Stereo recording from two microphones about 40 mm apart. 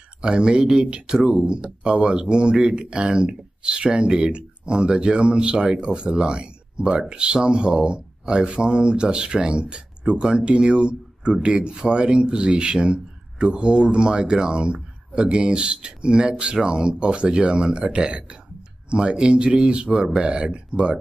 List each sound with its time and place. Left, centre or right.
0.2 s speech: right